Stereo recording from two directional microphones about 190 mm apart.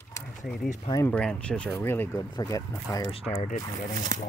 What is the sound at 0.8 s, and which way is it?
Speech, 20° left (ahead or behind).